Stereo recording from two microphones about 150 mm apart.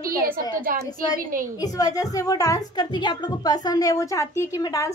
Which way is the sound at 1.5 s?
25° left (ahead or behind).